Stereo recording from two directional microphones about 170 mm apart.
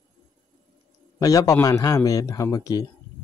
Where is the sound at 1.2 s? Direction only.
20° left (ahead or behind).